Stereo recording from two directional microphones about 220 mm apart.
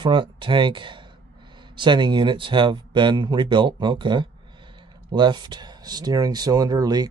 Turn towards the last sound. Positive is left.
turn(degrees=-15)  # may be behind; listen again after turning